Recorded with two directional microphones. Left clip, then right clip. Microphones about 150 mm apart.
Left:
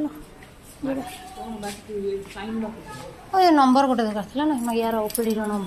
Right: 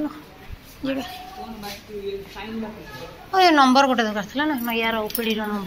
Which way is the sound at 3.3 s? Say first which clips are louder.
Right 2 dB; 15° left (ahead or behind).